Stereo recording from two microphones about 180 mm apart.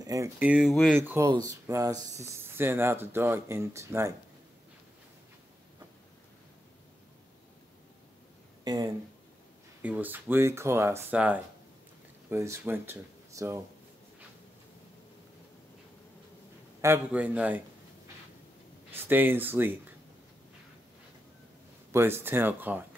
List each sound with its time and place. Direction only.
0.0 s a sound: 20° right (ahead or behind)
0.4 s speech: 5° right (ahead or behind)
8.7 s speech: 25° right (ahead or behind)
9.8 s speech: 10° right (ahead or behind)
16.8 s speech: 10° right (ahead or behind)
18.9 s speech: 10° right (ahead or behind)
21.9 s speech: 15° right (ahead or behind)